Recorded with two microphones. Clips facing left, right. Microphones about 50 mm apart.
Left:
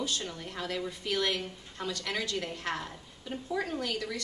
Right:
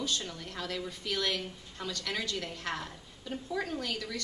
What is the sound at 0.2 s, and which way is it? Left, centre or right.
A woman's voice, centre.